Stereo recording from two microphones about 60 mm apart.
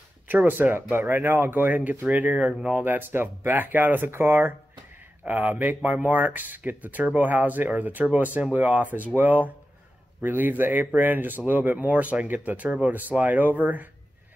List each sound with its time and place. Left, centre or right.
0.3 s speech: right
1.6 s speech: right
2.8 s speech: right
5.2 s speech: right